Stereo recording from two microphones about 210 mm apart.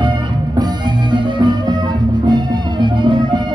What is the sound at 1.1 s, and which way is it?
Music, 20° right (ahead or behind).